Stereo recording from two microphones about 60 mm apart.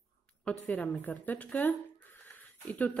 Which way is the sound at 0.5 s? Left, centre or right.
Left.